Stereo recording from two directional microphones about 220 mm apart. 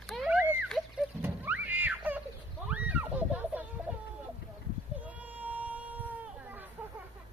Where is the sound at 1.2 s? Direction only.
10° right (ahead or behind).